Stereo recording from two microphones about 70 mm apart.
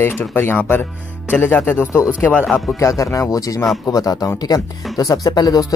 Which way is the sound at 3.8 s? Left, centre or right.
Left.